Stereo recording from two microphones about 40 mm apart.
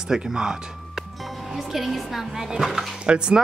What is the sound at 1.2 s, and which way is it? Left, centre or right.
Speech, centre.